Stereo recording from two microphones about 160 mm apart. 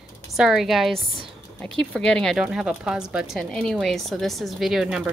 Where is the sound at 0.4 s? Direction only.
5° right (ahead or behind).